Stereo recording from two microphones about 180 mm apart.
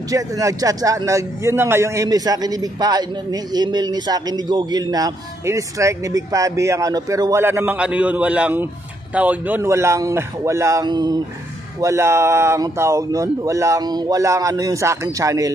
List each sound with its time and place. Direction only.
0.1 s a man's voice: 20° right (ahead or behind)